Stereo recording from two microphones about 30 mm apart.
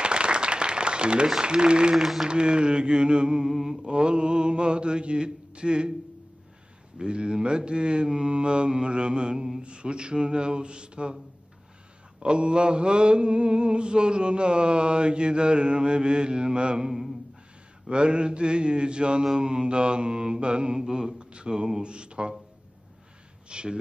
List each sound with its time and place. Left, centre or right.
0.0 s applause: right
1.4 s mantra: right
2.0 s speech: centre
2.2 s mantra: right
7.0 s mantra: right
12.2 s mantra: right
23.5 s mantra: right